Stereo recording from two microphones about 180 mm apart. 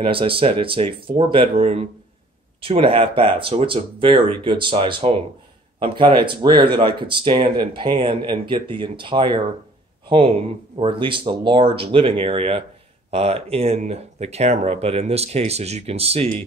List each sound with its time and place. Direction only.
0.0 s speech: 30° right (ahead or behind)